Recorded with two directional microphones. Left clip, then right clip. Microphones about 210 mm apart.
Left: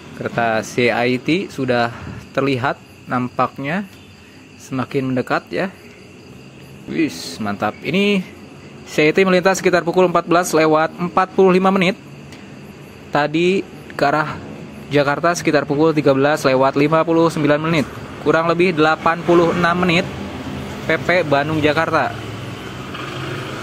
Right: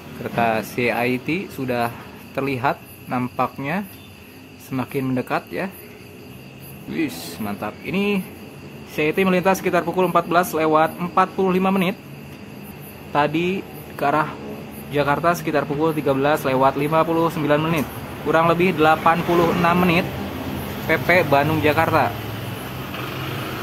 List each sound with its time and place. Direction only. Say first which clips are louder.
0.2 s speech: left 2 dB; 15° left (ahead or behind)
6.9 s speech: left 5 dB; 10° left (ahead or behind)
13.1 s speech: left 4 dB; 20° left (ahead or behind)